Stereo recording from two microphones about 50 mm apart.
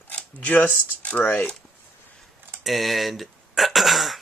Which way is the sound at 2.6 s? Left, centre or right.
Centre.